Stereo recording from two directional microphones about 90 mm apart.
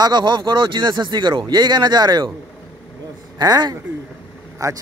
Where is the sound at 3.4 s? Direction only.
50° right (ahead or behind).